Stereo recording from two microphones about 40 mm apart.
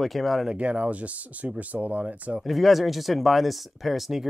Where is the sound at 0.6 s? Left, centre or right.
Right.